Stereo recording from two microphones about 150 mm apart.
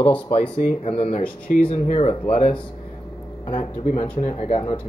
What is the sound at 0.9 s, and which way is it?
Speech, 40° left (ahead or behind).